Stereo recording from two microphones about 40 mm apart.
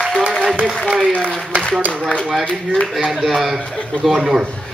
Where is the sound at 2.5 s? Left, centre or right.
Left.